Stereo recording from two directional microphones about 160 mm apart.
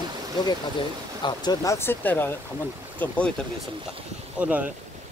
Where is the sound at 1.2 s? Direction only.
25° left (ahead or behind).